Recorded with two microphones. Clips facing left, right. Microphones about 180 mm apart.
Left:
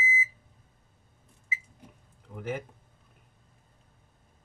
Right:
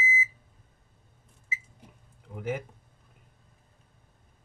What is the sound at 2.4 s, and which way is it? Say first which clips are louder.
Speech: right 2 dB; 10° right (ahead or behind).